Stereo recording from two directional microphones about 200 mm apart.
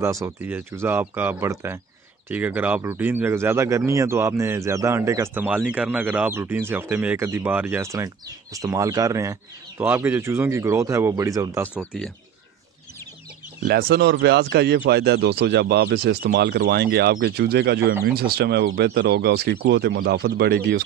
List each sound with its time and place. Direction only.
0.0 s speech: 15° right (ahead or behind)
13.6 s speech: 50° right (ahead or behind)
18.9 s speech: 50° right (ahead or behind)